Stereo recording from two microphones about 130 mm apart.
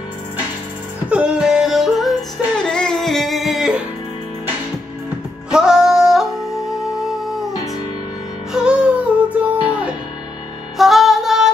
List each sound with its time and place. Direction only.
1.0 s music: 10° right (ahead or behind)
5.5 s music: 5° right (ahead or behind)
8.6 s music: 10° right (ahead or behind)
10.8 s music: centre (ahead or behind)